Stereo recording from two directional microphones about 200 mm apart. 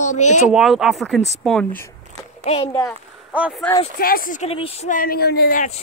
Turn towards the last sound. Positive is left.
turn(degrees=45)  # may be behind; listen again after turning